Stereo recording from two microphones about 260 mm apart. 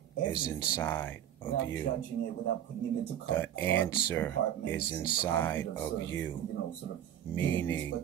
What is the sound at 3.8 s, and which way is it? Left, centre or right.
Speech, left.